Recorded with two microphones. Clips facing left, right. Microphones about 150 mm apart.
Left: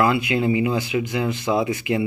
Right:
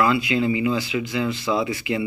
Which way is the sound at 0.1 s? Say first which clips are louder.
Left 1 dB; 55° left (ahead or behind).